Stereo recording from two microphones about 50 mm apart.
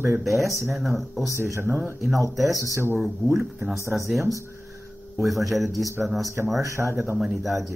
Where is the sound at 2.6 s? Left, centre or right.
Right.